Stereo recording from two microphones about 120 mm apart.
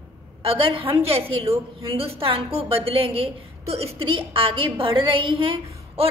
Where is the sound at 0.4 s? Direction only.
50° right (ahead or behind).